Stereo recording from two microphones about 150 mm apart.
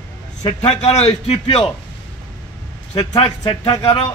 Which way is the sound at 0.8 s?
45° left (ahead or behind).